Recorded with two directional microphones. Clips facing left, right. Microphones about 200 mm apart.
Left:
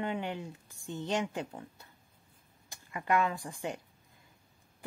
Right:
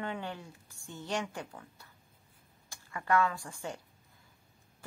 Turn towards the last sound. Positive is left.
turn(degrees=20)  # may be behind; listen again after turning